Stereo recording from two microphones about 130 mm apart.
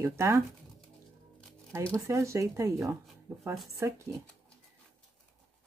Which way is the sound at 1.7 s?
20° right (ahead or behind).